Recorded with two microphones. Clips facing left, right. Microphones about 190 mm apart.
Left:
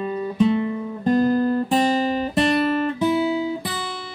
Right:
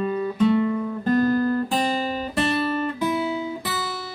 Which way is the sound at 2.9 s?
30° left (ahead or behind).